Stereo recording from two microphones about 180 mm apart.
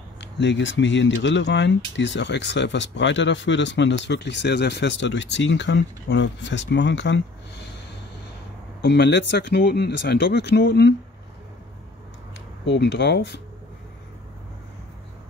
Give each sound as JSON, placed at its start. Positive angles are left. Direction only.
{"t": 0.2, "sound": "speech", "side_deg": 80}
{"t": 8.8, "sound": "speech", "side_deg": 70}
{"t": 12.6, "sound": "speech", "side_deg": 75}